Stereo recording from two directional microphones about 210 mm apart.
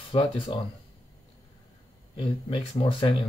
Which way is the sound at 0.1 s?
25° left (ahead or behind).